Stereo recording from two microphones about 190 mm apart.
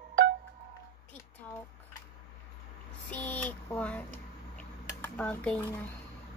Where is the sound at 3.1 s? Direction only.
10° left (ahead or behind).